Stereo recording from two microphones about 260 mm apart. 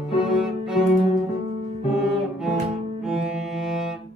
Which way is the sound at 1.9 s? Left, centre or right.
Centre.